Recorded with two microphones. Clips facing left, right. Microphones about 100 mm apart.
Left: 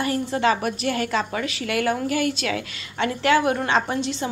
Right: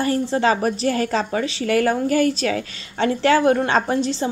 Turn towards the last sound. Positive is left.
turn(degrees=-35)  # may be behind; listen again after turning